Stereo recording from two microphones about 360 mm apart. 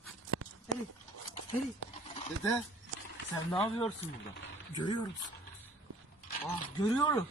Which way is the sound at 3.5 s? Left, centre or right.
Centre.